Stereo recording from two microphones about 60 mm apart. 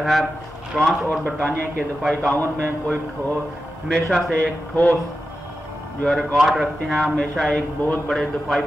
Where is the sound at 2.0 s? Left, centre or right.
Centre.